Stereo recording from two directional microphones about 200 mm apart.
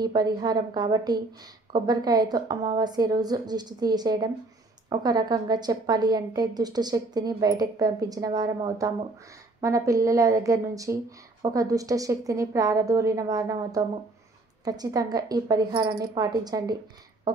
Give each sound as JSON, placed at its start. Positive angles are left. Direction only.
{"t": 0.0, "sound": "a woman's voice", "side_deg": -20}